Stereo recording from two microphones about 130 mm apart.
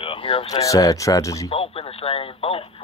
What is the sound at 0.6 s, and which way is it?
Speech, 25° left (ahead or behind).